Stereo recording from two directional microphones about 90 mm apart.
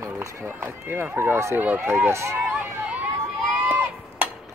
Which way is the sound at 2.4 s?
15° right (ahead or behind).